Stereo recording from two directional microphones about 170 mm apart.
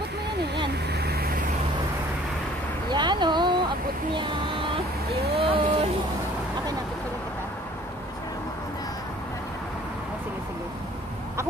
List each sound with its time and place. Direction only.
0.9 s vehicle: 70° right (ahead or behind)
2.9 s a sound: 25° right (ahead or behind)
5.3 s boat: 35° right (ahead or behind)